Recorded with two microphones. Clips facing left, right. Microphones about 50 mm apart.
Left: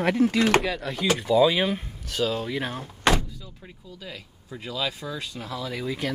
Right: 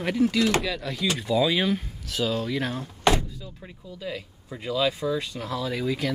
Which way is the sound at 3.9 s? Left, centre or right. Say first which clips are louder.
Right 8 dB; centre.